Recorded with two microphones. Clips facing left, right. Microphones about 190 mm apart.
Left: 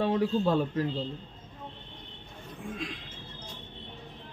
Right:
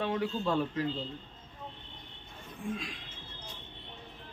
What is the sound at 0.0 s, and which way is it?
Speech, 35° left (ahead or behind).